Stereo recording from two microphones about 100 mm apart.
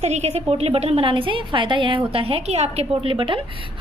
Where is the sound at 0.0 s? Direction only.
90° right.